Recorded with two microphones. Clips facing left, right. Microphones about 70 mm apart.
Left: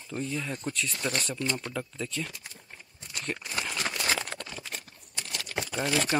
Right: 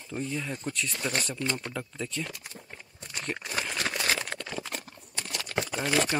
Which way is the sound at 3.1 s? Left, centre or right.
Right.